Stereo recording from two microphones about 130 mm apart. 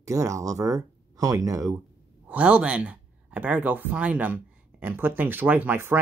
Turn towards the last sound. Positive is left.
turn(degrees=-15)  # may be behind; listen again after turning